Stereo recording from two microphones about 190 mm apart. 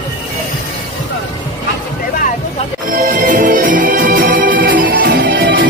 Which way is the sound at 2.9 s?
45° right (ahead or behind).